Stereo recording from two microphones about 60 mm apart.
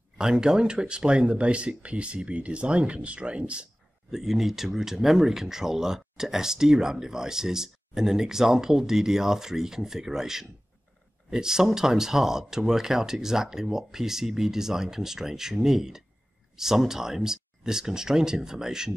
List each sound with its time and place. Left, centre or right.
0.2 s speech: centre
4.1 s speech: centre